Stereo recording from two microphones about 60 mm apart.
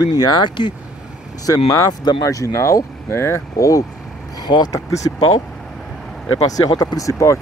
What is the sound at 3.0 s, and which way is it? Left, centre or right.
Speech, left.